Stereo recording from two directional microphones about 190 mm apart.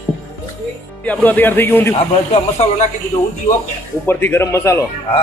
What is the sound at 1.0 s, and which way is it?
Speech, 10° left (ahead or behind).